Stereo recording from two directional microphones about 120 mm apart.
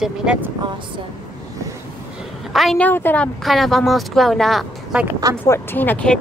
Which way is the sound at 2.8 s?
15° left (ahead or behind).